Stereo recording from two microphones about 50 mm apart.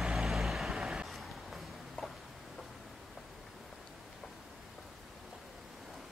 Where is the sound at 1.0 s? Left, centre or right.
Centre.